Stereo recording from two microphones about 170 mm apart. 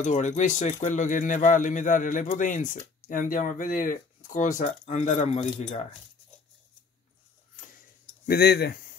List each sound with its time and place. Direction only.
0.0 s speech: 45° left (ahead or behind)
8.3 s speech: 65° left (ahead or behind)